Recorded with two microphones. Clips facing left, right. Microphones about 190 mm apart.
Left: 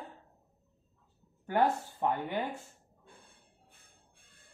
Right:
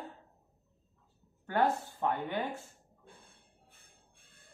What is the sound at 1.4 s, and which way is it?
Speech, 15° left (ahead or behind).